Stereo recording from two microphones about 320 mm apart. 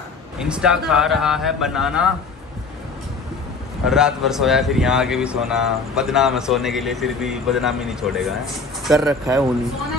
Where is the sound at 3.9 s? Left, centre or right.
Centre.